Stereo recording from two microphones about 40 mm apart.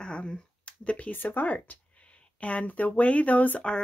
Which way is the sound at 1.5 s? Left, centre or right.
Left.